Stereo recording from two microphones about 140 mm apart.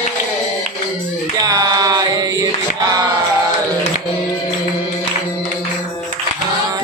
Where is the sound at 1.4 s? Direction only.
25° right (ahead or behind).